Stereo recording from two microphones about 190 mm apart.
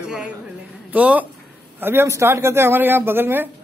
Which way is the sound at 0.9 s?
5° right (ahead or behind).